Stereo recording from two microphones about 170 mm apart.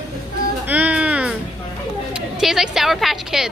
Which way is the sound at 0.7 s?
10° right (ahead or behind).